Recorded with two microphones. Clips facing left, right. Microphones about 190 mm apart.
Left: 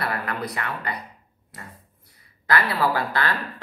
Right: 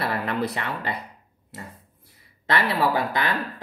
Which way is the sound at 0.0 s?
25° right (ahead or behind).